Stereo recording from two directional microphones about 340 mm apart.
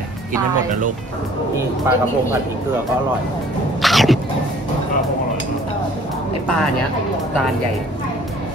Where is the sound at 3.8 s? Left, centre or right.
Centre.